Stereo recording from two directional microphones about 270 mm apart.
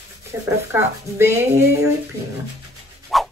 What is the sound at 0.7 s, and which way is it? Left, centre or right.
Speech, centre.